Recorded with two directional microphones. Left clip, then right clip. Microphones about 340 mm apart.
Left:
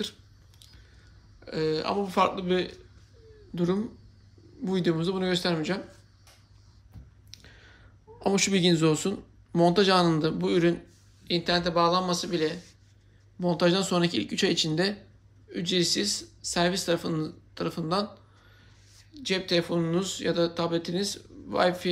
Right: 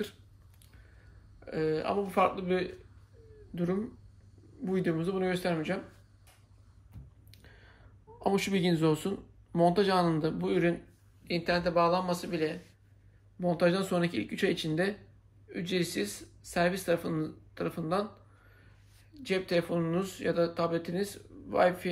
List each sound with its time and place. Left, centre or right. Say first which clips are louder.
1.4 s speech: left 3 dB; centre
4.6 s speech: left 4 dB; centre
7.2 s a sound: left 8 dB; centre
8.2 s speech: left 5 dB; centre
19.1 s speech: left 3 dB; centre